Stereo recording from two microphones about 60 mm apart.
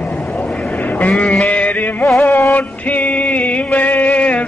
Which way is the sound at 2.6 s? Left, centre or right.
Left.